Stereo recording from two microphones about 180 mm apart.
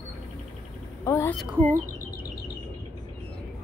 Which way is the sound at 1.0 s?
15° left (ahead or behind).